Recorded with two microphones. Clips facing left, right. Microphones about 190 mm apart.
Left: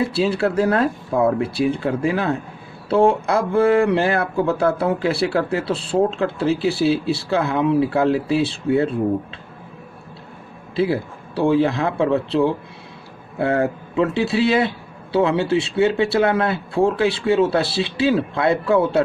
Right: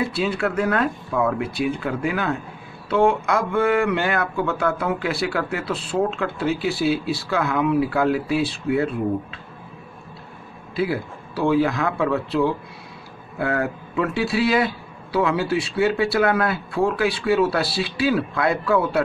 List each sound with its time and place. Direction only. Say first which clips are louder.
0.0 s speech: left 4 dB; 30° left (ahead or behind)
10.8 s speech: left 4 dB; 30° left (ahead or behind)